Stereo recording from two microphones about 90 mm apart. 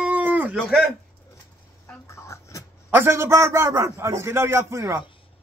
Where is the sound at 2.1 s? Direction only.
35° left (ahead or behind).